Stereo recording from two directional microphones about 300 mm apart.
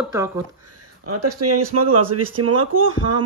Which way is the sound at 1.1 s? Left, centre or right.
Right.